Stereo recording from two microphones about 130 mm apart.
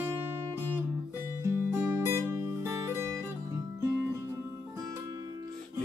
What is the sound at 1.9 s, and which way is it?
Music, 20° right (ahead or behind).